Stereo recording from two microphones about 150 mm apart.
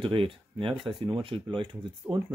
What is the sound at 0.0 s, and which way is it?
Speech, 35° right (ahead or behind).